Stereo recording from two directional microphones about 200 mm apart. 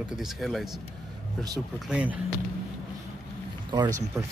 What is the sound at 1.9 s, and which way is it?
Speech, 5° right (ahead or behind).